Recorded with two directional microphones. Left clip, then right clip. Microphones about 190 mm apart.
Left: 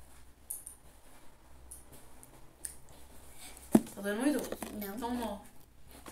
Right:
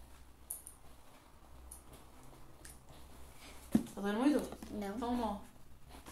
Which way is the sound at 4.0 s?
10° left (ahead or behind).